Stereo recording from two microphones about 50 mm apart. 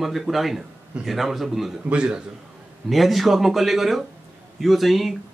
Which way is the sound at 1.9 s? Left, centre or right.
Right.